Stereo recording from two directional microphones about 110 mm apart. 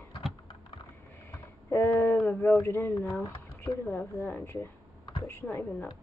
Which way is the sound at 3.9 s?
20° left (ahead or behind).